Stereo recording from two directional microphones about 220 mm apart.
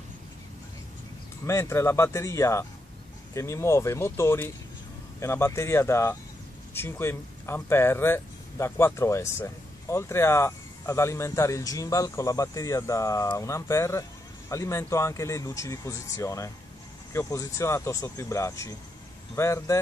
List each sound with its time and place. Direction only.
1.4 s speech: 10° left (ahead or behind)